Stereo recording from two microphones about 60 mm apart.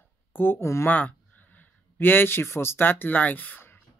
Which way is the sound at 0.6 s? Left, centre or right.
Left.